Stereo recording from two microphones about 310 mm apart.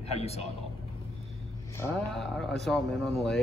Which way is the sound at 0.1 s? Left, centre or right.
Centre.